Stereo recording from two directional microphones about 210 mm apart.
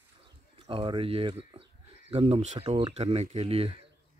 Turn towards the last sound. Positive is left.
turn(degrees=-25)  # may be behind; listen again after turning